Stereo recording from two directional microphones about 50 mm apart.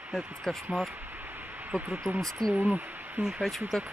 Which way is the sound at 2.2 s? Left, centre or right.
Centre.